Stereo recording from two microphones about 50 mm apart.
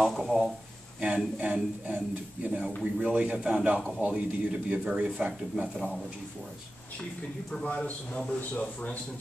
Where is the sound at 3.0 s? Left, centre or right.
Right.